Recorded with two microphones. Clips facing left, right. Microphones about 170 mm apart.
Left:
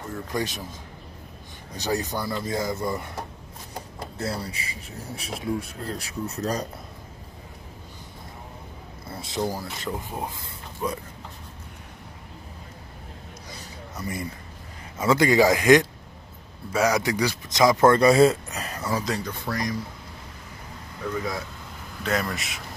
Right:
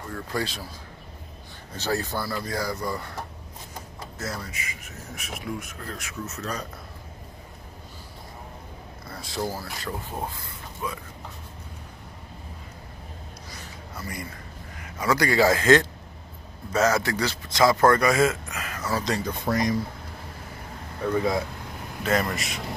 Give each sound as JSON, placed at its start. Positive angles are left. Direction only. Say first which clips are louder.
{"t": 0.1, "sound": "speech", "louder": "left 1 dB", "side_deg": 20}
{"t": 1.7, "sound": "speech", "louder": "left 1 dB", "side_deg": 15}
{"t": 4.2, "sound": "speech", "louder": "left 4 dB", "side_deg": 30}
{"t": 9.1, "sound": "speech", "louder": "left 2 dB", "side_deg": 20}
{"t": 10.8, "sound": "speech", "louder": "left 4 dB", "side_deg": 40}
{"t": 13.9, "sound": "a man's voice", "louder": "left 4 dB", "side_deg": 20}
{"t": 19.2, "sound": "speech", "louder": "right 4 dB", "side_deg": -20}
{"t": 21.1, "sound": "speech", "louder": "right 6 dB", "side_deg": -30}
{"t": 22.0, "sound": "a man's voice", "louder": "right 2 dB", "side_deg": 0}